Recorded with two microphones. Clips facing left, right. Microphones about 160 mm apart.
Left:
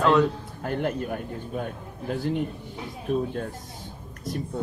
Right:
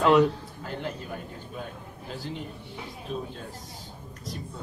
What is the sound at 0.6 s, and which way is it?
A man's voice, 55° left (ahead or behind).